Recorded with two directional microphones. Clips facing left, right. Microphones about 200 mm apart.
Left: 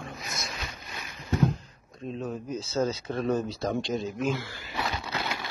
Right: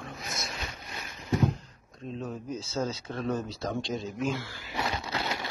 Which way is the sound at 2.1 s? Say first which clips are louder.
Left 2 dB; 5° left (ahead or behind).